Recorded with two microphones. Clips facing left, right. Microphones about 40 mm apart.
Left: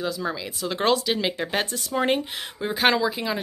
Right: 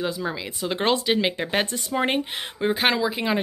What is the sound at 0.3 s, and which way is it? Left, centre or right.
Speech, centre.